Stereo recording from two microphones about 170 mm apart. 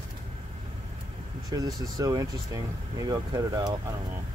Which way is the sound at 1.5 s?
20° right (ahead or behind).